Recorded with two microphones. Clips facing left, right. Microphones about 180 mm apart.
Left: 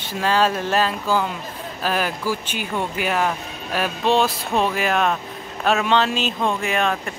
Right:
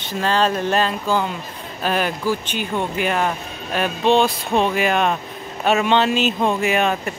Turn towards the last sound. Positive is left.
turn(degrees=-5)  # may be behind; listen again after turning